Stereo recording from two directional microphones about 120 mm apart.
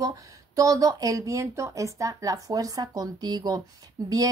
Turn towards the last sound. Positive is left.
turn(degrees=-30)  # may be behind; listen again after turning